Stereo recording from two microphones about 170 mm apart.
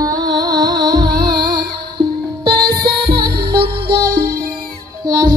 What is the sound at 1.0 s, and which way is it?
Music, 65° right (ahead or behind).